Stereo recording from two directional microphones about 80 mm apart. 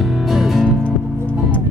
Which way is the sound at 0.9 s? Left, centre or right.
Centre.